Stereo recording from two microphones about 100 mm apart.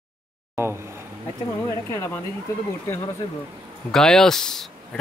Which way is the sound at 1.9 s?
30° left (ahead or behind).